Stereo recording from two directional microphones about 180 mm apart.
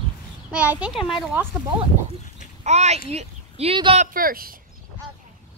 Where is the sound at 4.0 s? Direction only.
55° right (ahead or behind).